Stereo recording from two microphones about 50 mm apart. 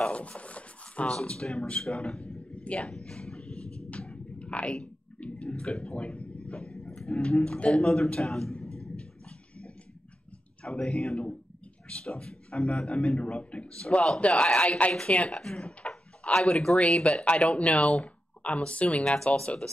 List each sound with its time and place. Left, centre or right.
0.1 s speech: left
2.5 s a sound: left
2.9 s a sound: centre
5.2 s speech: left
6.5 s vehicle: centre
7.0 s speech: centre
7.7 s speech: centre
8.1 s a sound: centre
10.6 s speech: centre
17.5 s speech: left
17.7 s speech: centre
18.0 s a sound: left
18.6 s speech: left
19.0 s speech: centre